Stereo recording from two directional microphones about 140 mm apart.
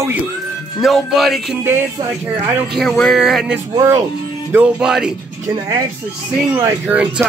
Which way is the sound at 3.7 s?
25° right (ahead or behind).